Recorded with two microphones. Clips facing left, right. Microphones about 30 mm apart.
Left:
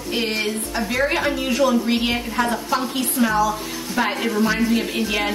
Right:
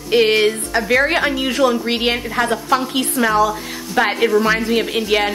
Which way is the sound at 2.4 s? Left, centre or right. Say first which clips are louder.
Right 4 dB; right.